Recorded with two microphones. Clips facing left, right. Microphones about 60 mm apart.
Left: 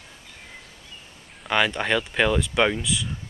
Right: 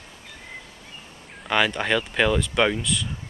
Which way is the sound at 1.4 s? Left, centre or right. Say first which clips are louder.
Even; centre.